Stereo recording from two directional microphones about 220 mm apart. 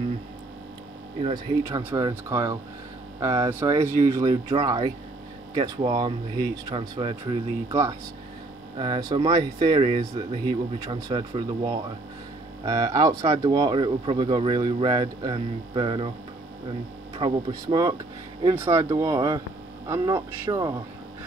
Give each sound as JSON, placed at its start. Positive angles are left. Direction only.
{"t": 1.2, "sound": "speech", "side_deg": -15}
{"t": 17.2, "sound": "speech", "side_deg": -20}